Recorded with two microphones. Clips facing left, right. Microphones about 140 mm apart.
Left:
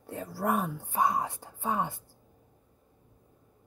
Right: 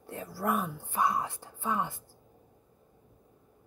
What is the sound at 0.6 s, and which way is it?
Speech, 45° left (ahead or behind).